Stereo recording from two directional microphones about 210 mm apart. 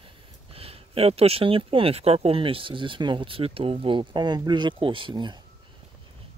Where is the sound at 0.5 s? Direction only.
25° right (ahead or behind).